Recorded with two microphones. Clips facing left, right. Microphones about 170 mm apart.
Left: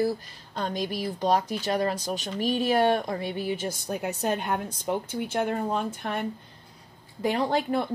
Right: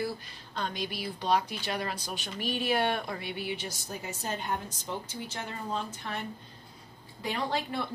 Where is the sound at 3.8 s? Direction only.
65° left (ahead or behind).